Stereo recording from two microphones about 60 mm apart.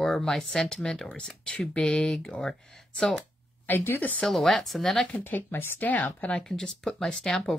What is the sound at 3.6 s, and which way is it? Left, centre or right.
Speech, left.